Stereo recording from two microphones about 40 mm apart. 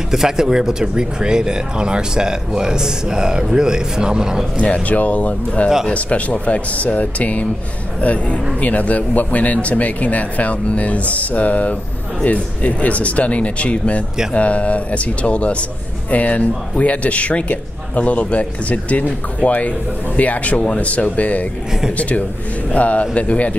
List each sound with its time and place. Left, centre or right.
0.1 s speech: centre
4.6 s speech: left
22.7 s speech: left